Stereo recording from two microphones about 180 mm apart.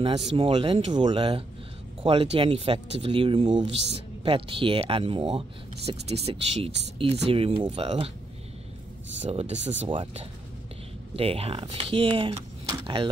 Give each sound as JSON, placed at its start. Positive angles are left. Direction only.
{"t": 0.0, "sound": "speech", "side_deg": -30}
{"t": 9.2, "sound": "speech", "side_deg": -35}